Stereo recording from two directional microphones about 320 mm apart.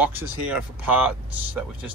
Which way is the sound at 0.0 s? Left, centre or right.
Centre.